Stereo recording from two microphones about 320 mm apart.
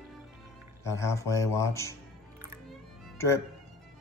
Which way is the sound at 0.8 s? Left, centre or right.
Centre.